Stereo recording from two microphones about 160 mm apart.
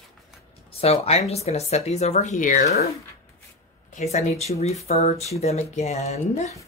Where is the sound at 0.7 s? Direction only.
40° left (ahead or behind); by 2.9 s 65° left (ahead or behind).